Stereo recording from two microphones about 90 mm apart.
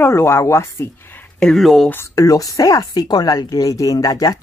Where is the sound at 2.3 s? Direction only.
40° left (ahead or behind).